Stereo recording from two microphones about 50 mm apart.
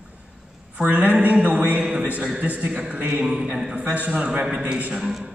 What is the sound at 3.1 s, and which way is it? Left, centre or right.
A man's voice, centre.